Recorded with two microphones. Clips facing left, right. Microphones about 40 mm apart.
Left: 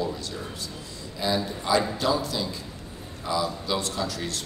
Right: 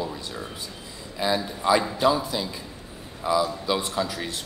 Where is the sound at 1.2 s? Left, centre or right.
Right.